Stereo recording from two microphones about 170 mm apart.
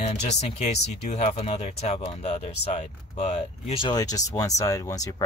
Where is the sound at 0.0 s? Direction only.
40° left (ahead or behind).